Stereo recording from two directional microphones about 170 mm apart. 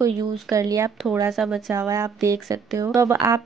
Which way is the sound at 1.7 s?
15° right (ahead or behind).